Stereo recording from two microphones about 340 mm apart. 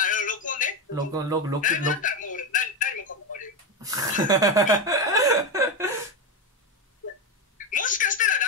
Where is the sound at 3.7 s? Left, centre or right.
Centre.